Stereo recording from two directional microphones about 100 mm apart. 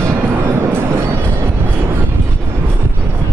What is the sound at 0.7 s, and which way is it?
Train, 25° right (ahead or behind).